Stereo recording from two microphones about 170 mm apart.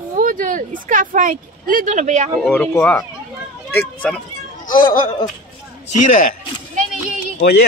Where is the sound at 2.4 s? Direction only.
5° left (ahead or behind).